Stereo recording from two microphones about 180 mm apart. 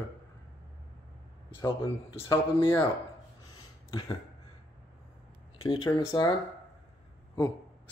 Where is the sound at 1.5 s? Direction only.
25° left (ahead or behind).